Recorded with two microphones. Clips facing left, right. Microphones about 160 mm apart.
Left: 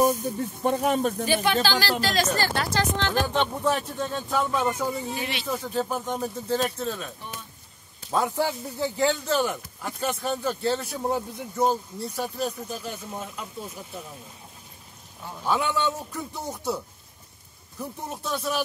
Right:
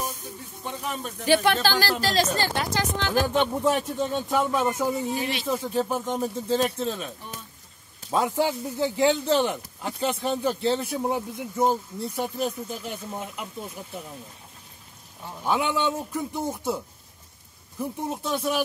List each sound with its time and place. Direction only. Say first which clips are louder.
0.0 s speech: left 12 dB; 50° left (ahead or behind)
1.2 s speech: right 2 dB; 70° right (ahead or behind); by 1.9 s 50° right (ahead or behind)
2.0 s speech: right 1 dB; 35° right (ahead or behind)
2.3 s speech: left 1 dB; 20° right (ahead or behind)
4.6 s speech: right 1 dB; centre (ahead or behind)
5.5 s speech: right 2 dB; 15° right (ahead or behind)
8.1 s speech: right 1 dB; 15° right (ahead or behind)
15.4 s speech: right 1 dB; 15° right (ahead or behind)
18.1 s speech: right 1 dB; 20° right (ahead or behind)